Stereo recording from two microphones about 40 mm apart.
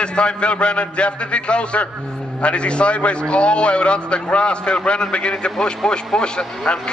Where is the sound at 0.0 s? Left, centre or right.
Left.